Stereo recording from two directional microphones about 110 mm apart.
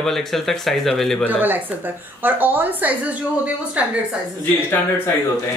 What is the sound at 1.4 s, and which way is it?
A woman's voice, 15° right (ahead or behind).